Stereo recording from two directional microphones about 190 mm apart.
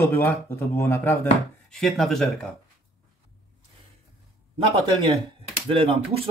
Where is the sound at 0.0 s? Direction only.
15° left (ahead or behind).